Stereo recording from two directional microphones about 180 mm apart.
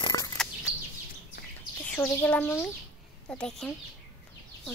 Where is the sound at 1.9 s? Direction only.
10° left (ahead or behind).